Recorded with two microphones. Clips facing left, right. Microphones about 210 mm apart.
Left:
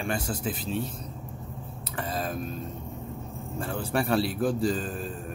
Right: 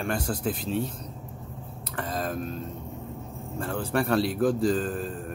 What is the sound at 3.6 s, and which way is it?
Speech, 10° left (ahead or behind).